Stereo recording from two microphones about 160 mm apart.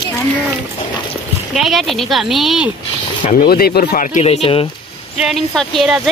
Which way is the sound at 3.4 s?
70° left (ahead or behind).